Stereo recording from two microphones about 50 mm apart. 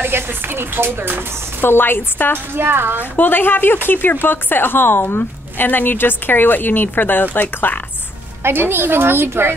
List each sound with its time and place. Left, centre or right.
0.0 s speech: right
1.6 s speech: left
2.5 s speech: right
3.2 s speech: left
8.4 s speech: right